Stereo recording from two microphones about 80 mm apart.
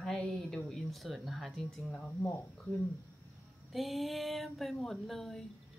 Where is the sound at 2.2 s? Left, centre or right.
Left.